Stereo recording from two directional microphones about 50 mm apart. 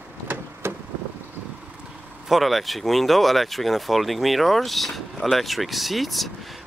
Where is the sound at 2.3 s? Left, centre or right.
Centre.